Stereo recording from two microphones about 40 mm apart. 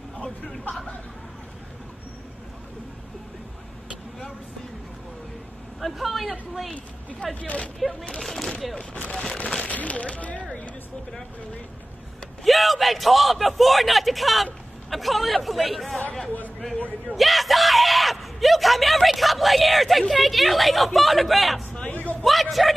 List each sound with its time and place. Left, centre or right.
0.2 s speech: centre
5.8 s speech: centre
6.7 s a woman's voice: left
8.1 s speech: centre
9.7 s speech: left
12.4 s speech: centre
17.1 s speech: centre
21.9 s a sound: left
22.2 s speech: centre